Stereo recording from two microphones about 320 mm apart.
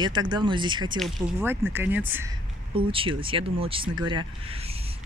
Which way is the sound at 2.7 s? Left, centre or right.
Centre.